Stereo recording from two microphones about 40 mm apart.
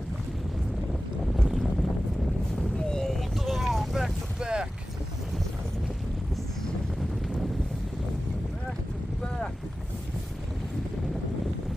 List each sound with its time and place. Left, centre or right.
1.3 s boat: centre
2.8 s vehicle: centre
3.2 s vehicle: centre
4.4 s boat: right